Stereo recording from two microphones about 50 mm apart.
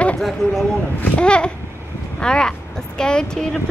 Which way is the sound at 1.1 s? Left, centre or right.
Centre.